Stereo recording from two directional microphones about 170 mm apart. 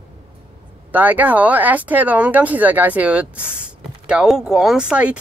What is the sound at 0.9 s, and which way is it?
Speech, 10° right (ahead or behind).